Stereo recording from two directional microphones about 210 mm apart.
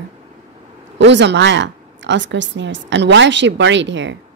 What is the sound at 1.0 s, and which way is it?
A woman's voice, 55° right (ahead or behind).